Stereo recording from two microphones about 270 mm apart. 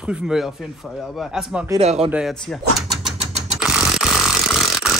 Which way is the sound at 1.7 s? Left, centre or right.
Right.